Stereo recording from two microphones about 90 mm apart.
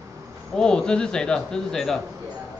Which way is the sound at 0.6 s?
10° left (ahead or behind).